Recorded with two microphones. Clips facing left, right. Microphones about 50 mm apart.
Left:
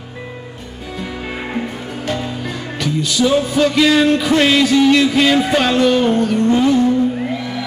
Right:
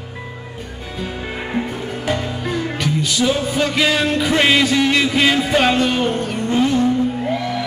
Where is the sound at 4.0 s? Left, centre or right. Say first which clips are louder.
Left 4 dB; centre.